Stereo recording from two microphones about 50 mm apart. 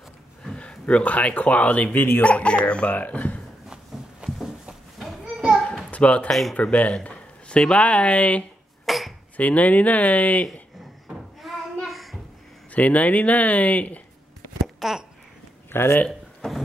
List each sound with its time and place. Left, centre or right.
0.6 s speech: left
2.2 s speech: left
3.6 s a sound: centre
5.9 s speech: left
8.8 s cough: centre
9.4 s speech: left
11.4 s a sound: centre
12.7 s speech: left
14.8 s babbling: centre
15.7 s speech: left
16.3 s a sound: centre